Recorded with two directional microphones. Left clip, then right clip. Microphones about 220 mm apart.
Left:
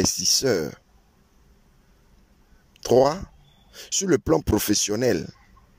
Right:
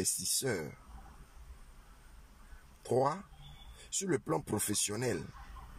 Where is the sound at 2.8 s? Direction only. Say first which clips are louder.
Left 13 dB; 40° left (ahead or behind).